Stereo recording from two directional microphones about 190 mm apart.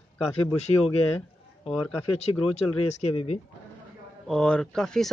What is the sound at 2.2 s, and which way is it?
Speech, 35° left (ahead or behind).